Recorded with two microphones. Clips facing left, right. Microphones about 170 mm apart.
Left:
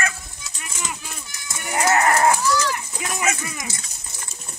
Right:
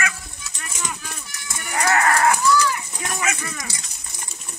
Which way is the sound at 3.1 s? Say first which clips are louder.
Left 2 dB; 20° left (ahead or behind).